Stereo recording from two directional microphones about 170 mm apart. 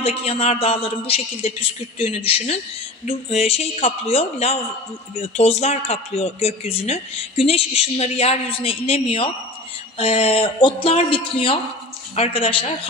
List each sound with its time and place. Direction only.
0.0 s speech: 35° left (ahead or behind)